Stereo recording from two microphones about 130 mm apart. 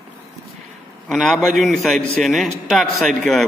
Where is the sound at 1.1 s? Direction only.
5° left (ahead or behind).